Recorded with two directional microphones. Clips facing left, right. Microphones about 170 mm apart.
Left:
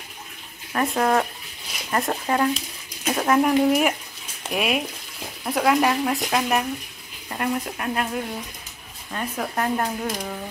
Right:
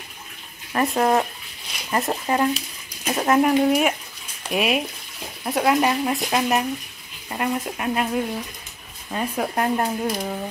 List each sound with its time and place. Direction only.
0.7 s speech: 10° right (ahead or behind)